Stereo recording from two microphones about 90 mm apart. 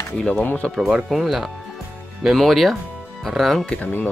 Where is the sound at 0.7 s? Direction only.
5° right (ahead or behind).